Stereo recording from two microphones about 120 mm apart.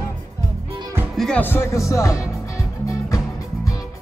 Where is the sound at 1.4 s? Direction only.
20° left (ahead or behind).